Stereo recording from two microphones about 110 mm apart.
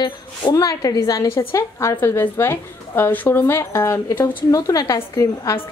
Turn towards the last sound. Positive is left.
turn(degrees=35)  # may be behind; listen again after turning